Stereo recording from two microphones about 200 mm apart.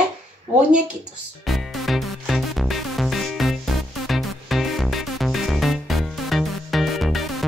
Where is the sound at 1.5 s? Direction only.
Centre (ahead or behind).